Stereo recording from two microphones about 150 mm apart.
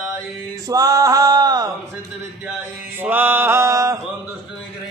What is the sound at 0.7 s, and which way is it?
Male singing, 25° right (ahead or behind).